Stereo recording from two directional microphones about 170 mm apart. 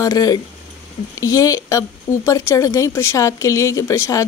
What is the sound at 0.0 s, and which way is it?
Speech, 20° left (ahead or behind).